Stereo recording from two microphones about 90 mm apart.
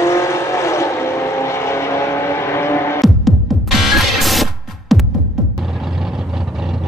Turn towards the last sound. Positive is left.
turn(degrees=0)  # may be behind; listen again after turning